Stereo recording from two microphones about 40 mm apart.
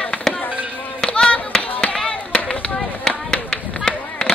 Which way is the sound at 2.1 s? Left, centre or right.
Left.